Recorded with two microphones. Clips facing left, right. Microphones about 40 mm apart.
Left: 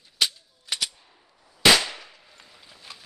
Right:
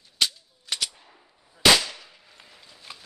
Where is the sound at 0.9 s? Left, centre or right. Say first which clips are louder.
Right 3 dB; right.